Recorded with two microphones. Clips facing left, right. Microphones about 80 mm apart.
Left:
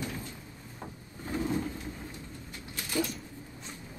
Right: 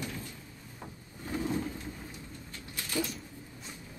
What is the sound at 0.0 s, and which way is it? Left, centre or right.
Drawer open or close, left.